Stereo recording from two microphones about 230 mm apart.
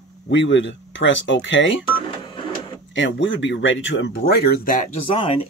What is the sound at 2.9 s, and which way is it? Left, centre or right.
Speech, left.